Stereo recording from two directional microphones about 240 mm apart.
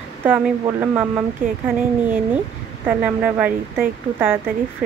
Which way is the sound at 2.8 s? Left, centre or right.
Centre.